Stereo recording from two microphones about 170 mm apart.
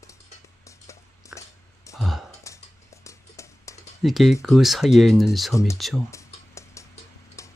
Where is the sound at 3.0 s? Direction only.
20° left (ahead or behind).